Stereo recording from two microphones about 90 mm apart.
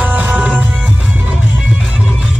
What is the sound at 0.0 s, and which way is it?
Music, 15° right (ahead or behind).